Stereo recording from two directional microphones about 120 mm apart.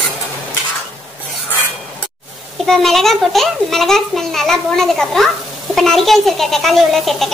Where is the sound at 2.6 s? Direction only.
5° left (ahead or behind).